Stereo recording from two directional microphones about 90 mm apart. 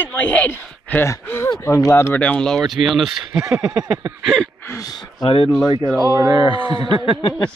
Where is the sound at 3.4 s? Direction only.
30° right (ahead or behind).